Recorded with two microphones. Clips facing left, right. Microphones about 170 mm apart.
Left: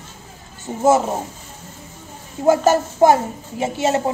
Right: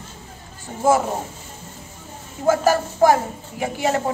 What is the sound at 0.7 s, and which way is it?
Speech, 20° left (ahead or behind).